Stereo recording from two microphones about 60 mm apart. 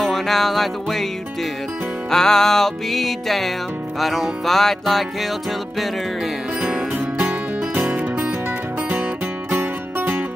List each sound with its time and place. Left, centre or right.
0.0 s music: centre
2.0 s music: centre
7.2 s music: right
9.5 s music: right